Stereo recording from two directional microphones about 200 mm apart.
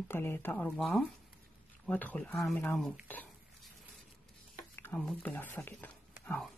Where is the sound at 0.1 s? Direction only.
10° left (ahead or behind).